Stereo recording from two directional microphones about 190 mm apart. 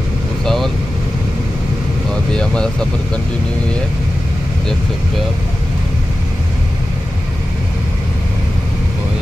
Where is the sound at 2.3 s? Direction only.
5° left (ahead or behind).